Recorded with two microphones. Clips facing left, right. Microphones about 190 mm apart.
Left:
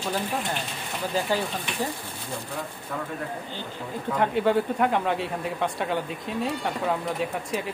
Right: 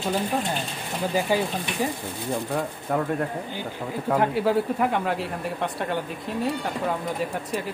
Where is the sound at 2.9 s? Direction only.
55° right (ahead or behind).